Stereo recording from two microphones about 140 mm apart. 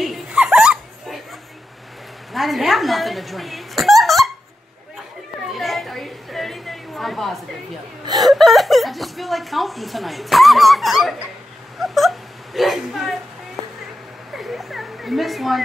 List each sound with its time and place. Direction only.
0.0 s dog: 5° right (ahead or behind)
2.3 s speech: centre (ahead or behind)
5.5 s a sound: centre (ahead or behind)
8.0 s hiccup: 30° right (ahead or behind)
8.3 s chuckle: centre (ahead or behind)
11.8 s whimper: centre (ahead or behind)
14.3 s a sound: centre (ahead or behind)